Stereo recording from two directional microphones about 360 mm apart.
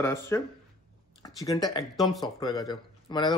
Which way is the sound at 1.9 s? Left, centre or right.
Centre.